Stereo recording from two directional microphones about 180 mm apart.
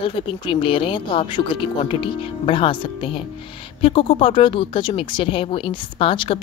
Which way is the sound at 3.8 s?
30° left (ahead or behind).